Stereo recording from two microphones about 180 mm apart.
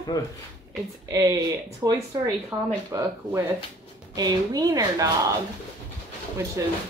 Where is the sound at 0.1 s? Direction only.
20° left (ahead or behind).